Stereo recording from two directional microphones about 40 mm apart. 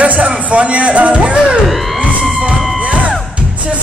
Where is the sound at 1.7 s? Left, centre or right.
Centre.